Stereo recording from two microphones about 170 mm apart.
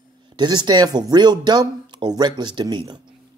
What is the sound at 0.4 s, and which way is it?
Speech, 25° right (ahead or behind).